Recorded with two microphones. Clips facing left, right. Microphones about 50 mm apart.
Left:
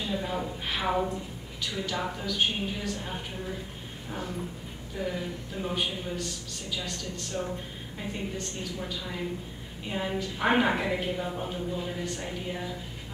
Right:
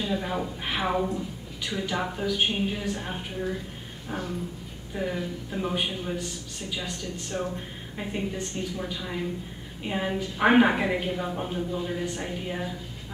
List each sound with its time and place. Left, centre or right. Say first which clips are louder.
0.1 s a woman's voice: right 2 dB; centre
4.9 s a woman's voice: right 3 dB; centre
7.3 s a woman's voice: right 2 dB; right